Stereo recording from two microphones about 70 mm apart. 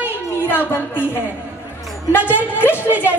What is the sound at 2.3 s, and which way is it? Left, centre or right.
Speech, right.